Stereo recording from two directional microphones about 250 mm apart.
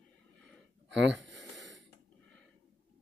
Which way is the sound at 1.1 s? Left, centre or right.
Centre.